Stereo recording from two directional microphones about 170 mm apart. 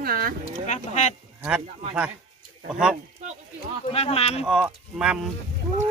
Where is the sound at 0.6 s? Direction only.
45° left (ahead or behind).